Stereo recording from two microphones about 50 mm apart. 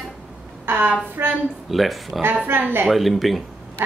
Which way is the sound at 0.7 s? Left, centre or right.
Right.